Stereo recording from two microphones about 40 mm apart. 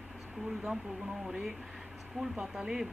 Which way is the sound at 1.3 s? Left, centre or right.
Centre.